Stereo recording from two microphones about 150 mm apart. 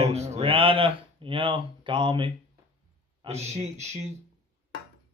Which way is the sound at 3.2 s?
45° right (ahead or behind).